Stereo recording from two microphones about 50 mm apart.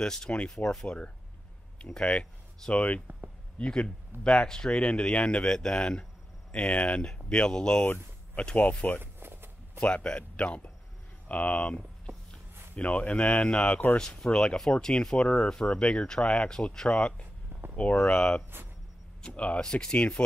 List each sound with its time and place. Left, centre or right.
0.0 s speech: centre
8.5 s speech: left
9.0 s a sound: right
9.8 s a man's voice: left
12.7 s speech: left
17.5 s a sound: right
17.7 s speech: left
19.2 s speech: left